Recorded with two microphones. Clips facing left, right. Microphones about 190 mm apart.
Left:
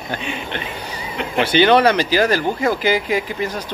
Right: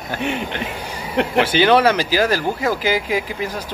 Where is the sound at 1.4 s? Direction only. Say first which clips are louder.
Left 2 dB; 10° right (ahead or behind).